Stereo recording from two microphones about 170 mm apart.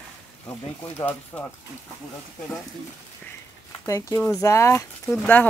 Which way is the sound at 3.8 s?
15° left (ahead or behind).